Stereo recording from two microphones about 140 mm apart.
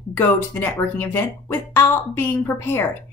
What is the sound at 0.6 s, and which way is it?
A woman's voice, 15° left (ahead or behind).